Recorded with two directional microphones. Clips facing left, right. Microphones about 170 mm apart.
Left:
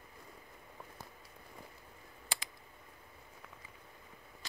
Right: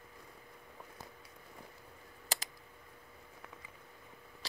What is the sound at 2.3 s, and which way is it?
Typing, 40° right (ahead or behind).